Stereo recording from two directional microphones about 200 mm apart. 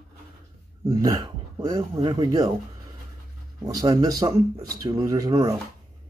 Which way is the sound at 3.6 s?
20° right (ahead or behind).